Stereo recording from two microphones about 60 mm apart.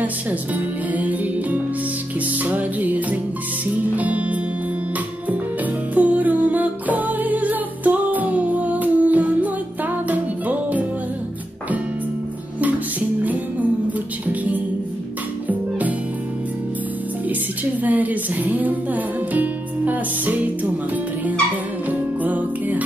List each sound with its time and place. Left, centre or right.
0.0 s music: right
5.9 s music: right
13.2 s music: right
17.8 s music: right
22.2 s music: right